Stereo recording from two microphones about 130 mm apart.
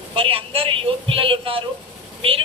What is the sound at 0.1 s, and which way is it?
A man's voice, 45° right (ahead or behind).